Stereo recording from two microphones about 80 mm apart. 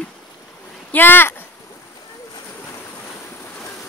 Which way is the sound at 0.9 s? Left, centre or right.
Left.